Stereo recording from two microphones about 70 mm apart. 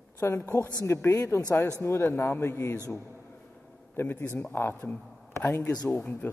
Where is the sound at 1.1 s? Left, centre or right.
Left.